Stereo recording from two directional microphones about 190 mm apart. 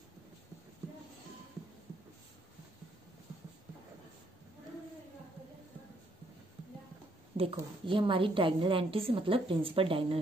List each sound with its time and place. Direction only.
7.3 s a woman's voice: 30° right (ahead or behind)